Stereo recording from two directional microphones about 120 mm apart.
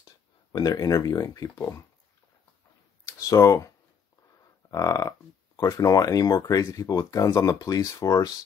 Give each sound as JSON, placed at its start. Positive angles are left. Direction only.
{"t": 0.5, "sound": "speech", "side_deg": 35}
{"t": 3.3, "sound": "speech", "side_deg": 25}
{"t": 4.6, "sound": "a sound", "side_deg": 30}
{"t": 5.6, "sound": "speech", "side_deg": 30}